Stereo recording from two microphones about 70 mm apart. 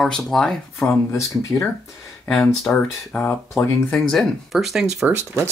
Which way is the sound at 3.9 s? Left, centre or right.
Centre.